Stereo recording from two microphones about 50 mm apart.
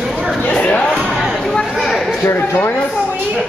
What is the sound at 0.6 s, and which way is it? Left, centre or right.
Speech, left.